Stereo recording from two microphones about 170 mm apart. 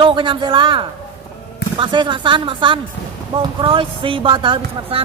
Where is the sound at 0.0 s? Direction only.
30° right (ahead or behind).